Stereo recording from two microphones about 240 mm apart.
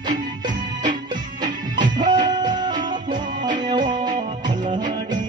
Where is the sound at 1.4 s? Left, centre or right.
Centre.